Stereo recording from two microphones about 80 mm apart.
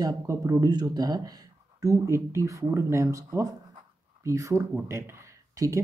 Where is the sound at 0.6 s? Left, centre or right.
Right.